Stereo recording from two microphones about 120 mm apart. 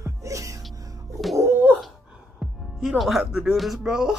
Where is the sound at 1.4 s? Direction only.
15° right (ahead or behind).